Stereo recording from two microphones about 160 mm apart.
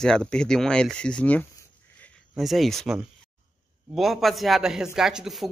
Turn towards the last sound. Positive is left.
turn(degrees=0)  # may be behind; listen again after turning